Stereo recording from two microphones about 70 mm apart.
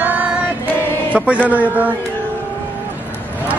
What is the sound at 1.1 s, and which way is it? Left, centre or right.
Mantra, centre.